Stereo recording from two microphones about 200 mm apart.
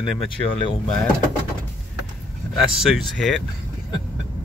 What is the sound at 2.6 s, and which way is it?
Speech, centre (ahead or behind).